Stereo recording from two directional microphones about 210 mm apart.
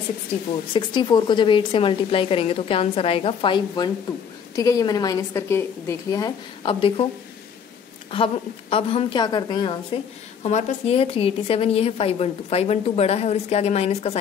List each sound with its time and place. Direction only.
0.7 s a woman's voice: 20° left (ahead or behind)
8.1 s a woman's voice: 25° left (ahead or behind)